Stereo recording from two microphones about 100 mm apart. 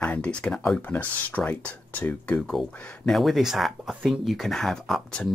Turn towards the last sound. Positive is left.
turn(degrees=5)  # may be behind; listen again after turning